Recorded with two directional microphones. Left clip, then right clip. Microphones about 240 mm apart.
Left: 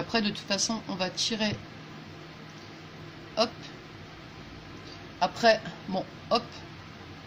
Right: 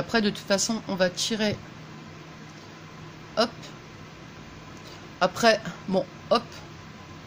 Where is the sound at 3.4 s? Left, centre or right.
Right.